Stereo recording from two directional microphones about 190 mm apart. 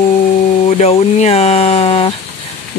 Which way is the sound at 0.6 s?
35° left (ahead or behind).